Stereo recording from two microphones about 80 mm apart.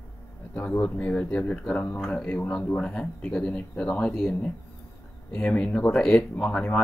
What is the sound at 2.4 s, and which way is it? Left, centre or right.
Speech, left.